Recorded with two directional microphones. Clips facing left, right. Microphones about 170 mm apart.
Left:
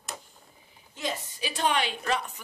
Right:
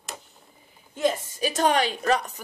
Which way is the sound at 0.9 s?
45° right (ahead or behind).